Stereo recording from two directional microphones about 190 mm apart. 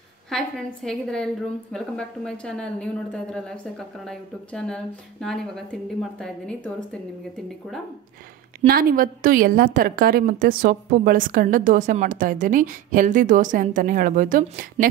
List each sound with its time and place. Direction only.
0.3 s a woman's voice: centre (ahead or behind)
8.5 s a woman's voice: 50° right (ahead or behind)